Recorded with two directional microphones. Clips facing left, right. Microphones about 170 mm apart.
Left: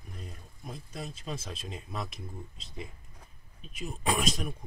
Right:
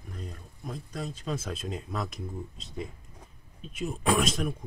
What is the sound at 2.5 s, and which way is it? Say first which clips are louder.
Speech: right 5 dB; centre (ahead or behind).